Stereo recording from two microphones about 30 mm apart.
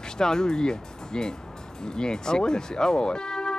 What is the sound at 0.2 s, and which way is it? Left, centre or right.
Speech, left.